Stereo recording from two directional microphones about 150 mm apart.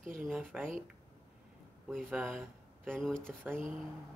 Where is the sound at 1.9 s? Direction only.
5° left (ahead or behind).